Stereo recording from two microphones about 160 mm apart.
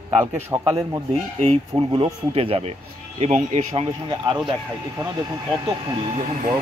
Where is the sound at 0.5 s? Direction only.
20° right (ahead or behind).